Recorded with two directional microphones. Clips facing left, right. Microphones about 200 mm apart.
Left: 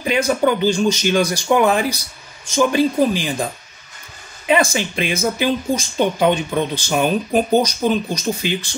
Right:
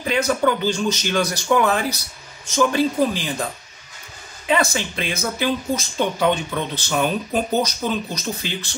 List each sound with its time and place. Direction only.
0.0 s speech: 15° left (ahead or behind)
4.5 s speech: 15° left (ahead or behind)